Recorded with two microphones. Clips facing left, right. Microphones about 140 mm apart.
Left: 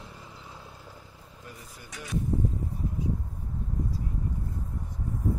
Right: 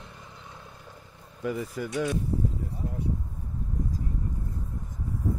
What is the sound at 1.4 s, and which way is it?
Speech, 90° right.